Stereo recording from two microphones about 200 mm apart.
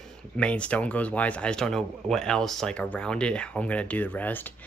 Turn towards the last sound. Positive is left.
turn(degrees=10)  # may be behind; listen again after turning